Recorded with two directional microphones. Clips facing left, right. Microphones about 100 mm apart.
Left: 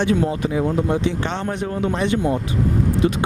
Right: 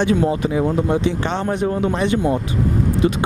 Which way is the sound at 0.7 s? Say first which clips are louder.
Right 2 dB; 30° right (ahead or behind).